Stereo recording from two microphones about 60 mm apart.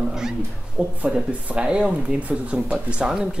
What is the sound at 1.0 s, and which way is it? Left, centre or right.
Speech, centre.